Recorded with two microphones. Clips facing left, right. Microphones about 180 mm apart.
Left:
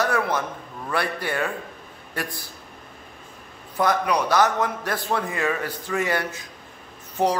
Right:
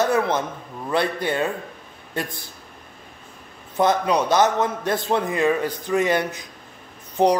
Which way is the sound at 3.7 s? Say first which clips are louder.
Right 3 dB; 25° right (ahead or behind).